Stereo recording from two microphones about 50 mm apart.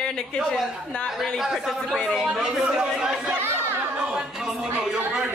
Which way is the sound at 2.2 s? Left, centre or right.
Centre.